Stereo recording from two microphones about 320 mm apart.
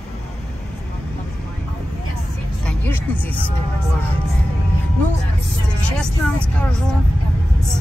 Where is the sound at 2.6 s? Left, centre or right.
Centre.